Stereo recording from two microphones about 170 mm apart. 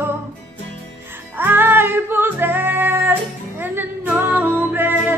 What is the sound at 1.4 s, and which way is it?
Music, 10° right (ahead or behind).